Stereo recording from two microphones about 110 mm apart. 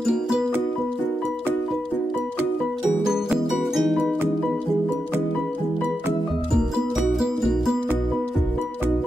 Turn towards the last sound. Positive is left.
turn(degrees=0)  # may be behind; listen again after turning